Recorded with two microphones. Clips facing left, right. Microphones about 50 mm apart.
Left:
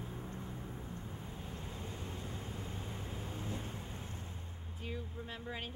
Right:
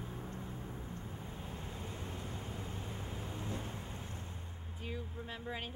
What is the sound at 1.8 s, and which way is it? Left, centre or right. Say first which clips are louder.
Vehicle: even; right.